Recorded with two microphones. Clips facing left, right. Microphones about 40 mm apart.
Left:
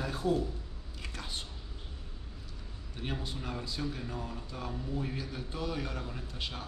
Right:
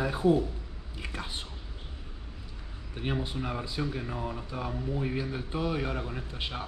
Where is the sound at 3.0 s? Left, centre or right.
Right.